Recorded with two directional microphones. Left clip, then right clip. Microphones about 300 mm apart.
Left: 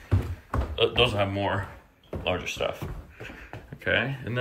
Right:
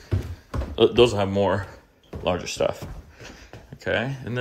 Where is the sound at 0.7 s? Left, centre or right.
Centre.